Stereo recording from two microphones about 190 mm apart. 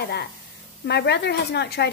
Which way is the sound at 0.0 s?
55° left (ahead or behind).